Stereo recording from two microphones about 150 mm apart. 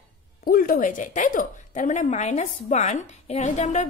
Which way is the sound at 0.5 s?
70° left (ahead or behind).